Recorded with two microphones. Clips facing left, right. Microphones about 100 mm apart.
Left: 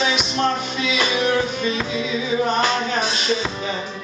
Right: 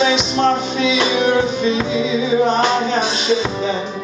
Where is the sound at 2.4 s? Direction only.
25° right (ahead or behind).